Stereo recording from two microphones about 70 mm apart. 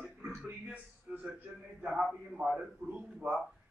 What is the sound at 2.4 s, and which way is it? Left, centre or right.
Speech, centre.